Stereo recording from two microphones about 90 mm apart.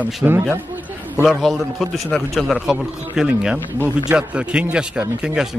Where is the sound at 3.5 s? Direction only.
25° left (ahead or behind).